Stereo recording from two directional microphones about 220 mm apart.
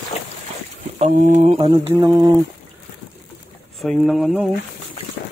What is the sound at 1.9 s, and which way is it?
Speech, 20° right (ahead or behind).